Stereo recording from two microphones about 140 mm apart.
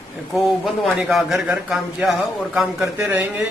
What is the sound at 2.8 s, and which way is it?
Speech, 15° right (ahead or behind).